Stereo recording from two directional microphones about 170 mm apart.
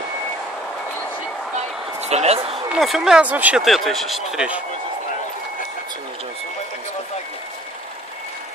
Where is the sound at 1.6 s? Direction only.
40° right (ahead or behind).